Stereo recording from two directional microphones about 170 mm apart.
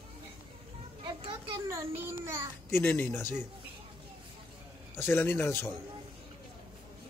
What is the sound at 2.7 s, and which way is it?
Speech, 15° left (ahead or behind).